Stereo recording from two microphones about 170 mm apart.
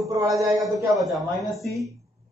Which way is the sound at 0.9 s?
Centre (ahead or behind).